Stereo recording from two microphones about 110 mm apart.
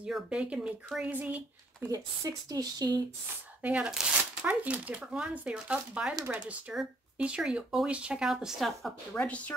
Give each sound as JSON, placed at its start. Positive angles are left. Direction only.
{"t": 0.0, "sound": "speech", "side_deg": -10}
{"t": 1.9, "sound": "speech", "side_deg": -35}
{"t": 3.6, "sound": "speech", "side_deg": -10}
{"t": 6.7, "sound": "speech", "side_deg": -5}
{"t": 9.1, "sound": "speech", "side_deg": 10}